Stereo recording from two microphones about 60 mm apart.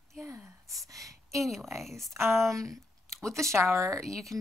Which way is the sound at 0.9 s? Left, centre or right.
Right.